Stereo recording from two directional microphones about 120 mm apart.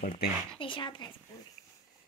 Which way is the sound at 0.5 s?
45° left (ahead or behind).